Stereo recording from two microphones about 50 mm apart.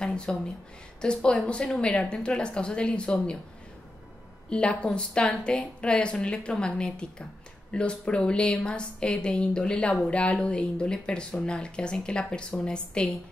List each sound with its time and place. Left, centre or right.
0.0 s a sound: centre
1.0 s speech: centre
4.5 s a woman's voice: left